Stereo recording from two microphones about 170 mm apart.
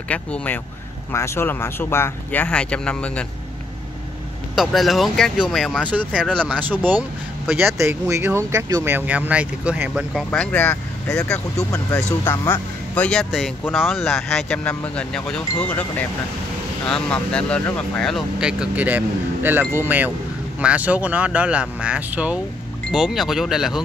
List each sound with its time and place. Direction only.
0.1 s speech: 10° left (ahead or behind)
4.6 s speech: centre (ahead or behind)
6.2 s speech: 5° left (ahead or behind)
7.4 s speech: 15° right (ahead or behind)
10.3 s speech: 10° left (ahead or behind)
16.8 s speech: 5° left (ahead or behind)